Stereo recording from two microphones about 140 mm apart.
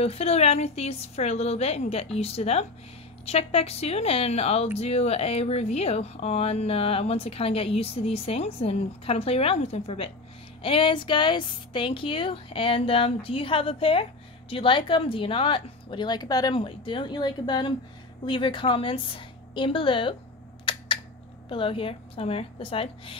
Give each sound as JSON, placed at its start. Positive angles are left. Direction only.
{"t": 0.0, "sound": "speech", "side_deg": 45}
{"t": 20.7, "sound": "a sound", "side_deg": 35}
{"t": 21.5, "sound": "speech", "side_deg": 40}